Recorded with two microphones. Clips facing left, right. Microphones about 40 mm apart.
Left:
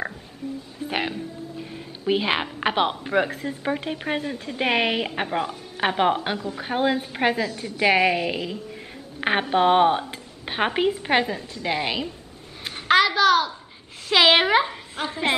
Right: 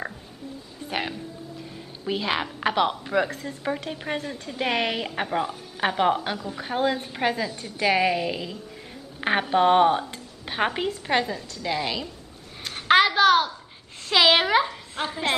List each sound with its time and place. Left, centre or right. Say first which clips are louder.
0.8 s a woman's voice: left 3 dB; centre
12.8 s a sound: even; centre
14.0 s speech: left 2 dB; centre
15.0 s a woman's voice: even; centre